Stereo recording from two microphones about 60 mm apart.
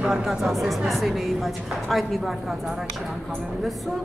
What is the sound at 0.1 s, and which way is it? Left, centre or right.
A woman's voice, centre.